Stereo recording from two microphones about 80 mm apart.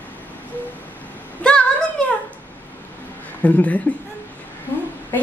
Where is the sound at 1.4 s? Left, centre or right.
Centre.